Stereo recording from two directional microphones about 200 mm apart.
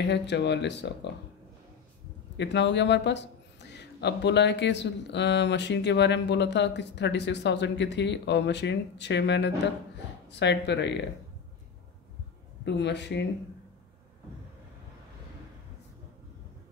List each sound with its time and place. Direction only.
0.1 s speech: 60° left (ahead or behind)
2.3 s speech: 60° left (ahead or behind)
12.6 s speech: 60° left (ahead or behind)